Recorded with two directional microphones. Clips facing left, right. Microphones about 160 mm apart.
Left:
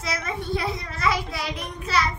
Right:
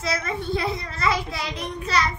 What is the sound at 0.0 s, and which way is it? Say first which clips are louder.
A child's voice: right 3 dB; 10° left (ahead or behind).